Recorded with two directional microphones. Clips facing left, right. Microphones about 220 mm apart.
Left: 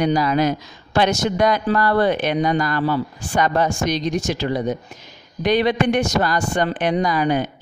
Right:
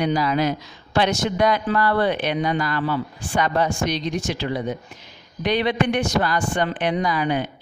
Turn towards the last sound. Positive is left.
turn(degrees=45)  # may be behind; listen again after turning